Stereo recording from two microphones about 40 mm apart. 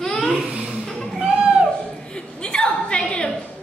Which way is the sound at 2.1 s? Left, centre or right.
Left.